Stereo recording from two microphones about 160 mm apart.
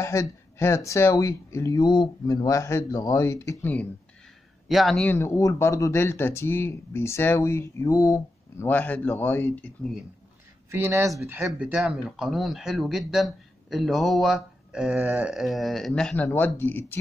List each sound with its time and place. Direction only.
0.0 s speech: 20° left (ahead or behind)
4.6 s speech: centre (ahead or behind)
5.1 s speech: 15° left (ahead or behind)
10.7 s speech: 15° right (ahead or behind); by 17.0 s 15° left (ahead or behind)